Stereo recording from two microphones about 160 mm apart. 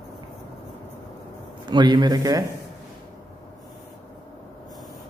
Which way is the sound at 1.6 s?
25° right (ahead or behind).